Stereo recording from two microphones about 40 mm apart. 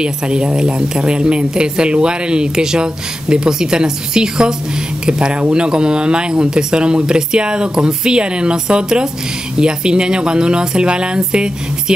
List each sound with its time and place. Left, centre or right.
0.0 s a woman's voice: right